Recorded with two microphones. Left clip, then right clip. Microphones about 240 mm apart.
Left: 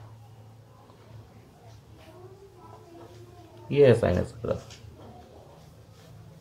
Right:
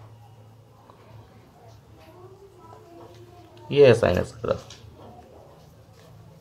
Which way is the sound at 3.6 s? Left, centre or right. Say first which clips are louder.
Right 4 dB; right.